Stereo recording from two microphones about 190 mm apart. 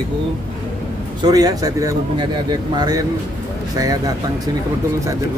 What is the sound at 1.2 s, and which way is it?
Speech, 20° right (ahead or behind).